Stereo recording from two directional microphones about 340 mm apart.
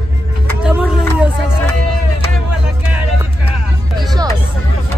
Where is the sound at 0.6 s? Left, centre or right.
Centre.